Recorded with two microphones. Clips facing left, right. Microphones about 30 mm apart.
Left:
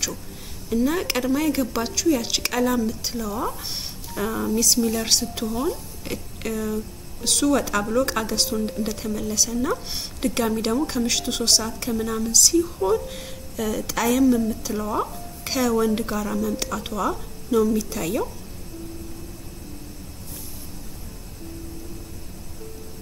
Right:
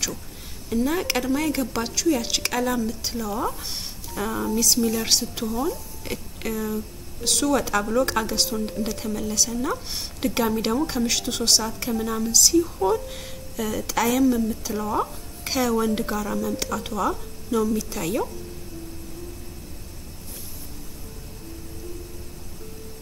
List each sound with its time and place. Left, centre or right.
0.7 s speech: centre
5.5 s speech: centre
6.0 s speech: centre